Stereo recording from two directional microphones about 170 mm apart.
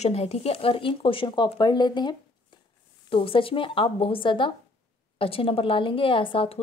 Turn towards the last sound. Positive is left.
turn(degrees=30)  # may be behind; listen again after turning